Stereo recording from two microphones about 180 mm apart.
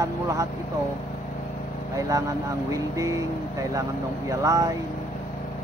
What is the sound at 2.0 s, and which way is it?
Speech, 20° right (ahead or behind).